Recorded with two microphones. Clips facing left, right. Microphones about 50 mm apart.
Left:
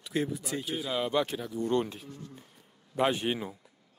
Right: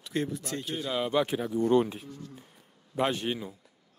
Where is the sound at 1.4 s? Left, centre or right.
Right.